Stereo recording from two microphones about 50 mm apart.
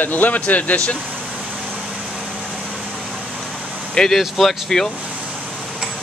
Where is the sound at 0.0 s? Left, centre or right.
Left.